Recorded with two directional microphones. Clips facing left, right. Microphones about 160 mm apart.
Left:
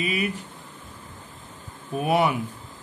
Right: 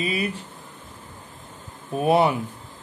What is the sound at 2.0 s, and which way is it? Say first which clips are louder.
Speech: right 3 dB; 30° right (ahead or behind).